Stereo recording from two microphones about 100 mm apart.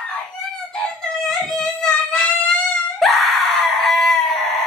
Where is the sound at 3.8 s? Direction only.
Centre (ahead or behind).